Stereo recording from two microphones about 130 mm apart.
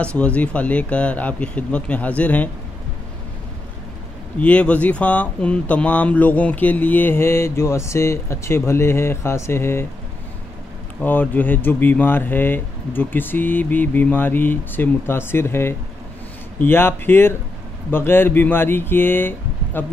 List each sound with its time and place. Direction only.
0.0 s speech: 10° left (ahead or behind)
4.4 s speech: 10° left (ahead or behind)
11.0 s speech: 15° left (ahead or behind)